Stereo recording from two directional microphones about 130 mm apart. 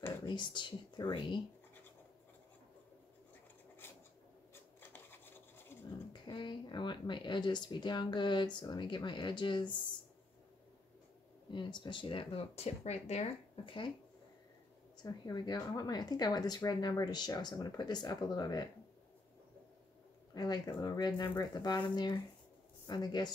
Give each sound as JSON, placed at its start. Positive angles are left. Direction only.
{"t": 0.2, "sound": "a woman's voice", "side_deg": 35}
{"t": 3.8, "sound": "a sound", "side_deg": 15}
{"t": 6.2, "sound": "a woman's voice", "side_deg": 35}
{"t": 11.5, "sound": "speech", "side_deg": 35}
{"t": 15.0, "sound": "a woman's voice", "side_deg": 30}
{"t": 20.3, "sound": "a woman's voice", "side_deg": 30}